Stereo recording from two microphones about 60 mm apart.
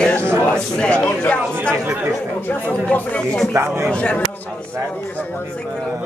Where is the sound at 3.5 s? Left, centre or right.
Right.